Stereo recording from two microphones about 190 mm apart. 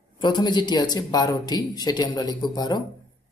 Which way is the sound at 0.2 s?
20° left (ahead or behind).